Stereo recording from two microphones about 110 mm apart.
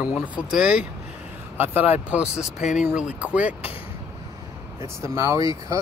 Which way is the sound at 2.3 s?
85° left.